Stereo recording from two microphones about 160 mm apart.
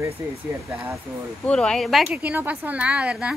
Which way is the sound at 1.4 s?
5° left (ahead or behind).